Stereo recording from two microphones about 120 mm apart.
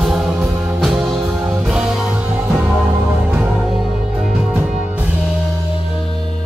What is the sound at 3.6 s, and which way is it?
Music, centre (ahead or behind).